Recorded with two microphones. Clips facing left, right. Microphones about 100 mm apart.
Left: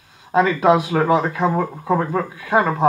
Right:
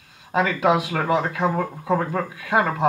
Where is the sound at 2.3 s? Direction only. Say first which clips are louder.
Left 2 dB; 20° left (ahead or behind).